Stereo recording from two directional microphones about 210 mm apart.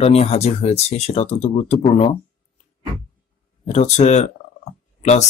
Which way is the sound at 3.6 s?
30° left (ahead or behind).